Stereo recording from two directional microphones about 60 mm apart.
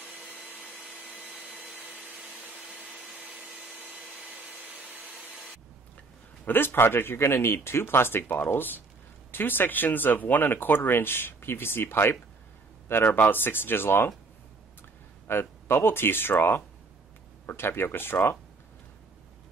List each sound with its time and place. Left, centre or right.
0.5 s vacuum cleaner: right
5.0 s a sound: right
6.4 s speech: left
15.2 s speech: left